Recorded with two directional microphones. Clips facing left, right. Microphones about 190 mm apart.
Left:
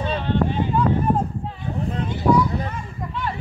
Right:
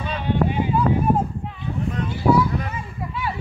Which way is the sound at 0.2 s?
10° right (ahead or behind).